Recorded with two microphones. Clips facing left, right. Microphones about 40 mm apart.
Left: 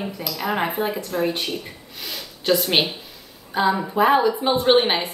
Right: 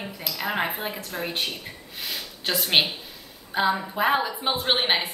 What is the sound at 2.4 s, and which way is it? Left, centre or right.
A woman's voice, centre.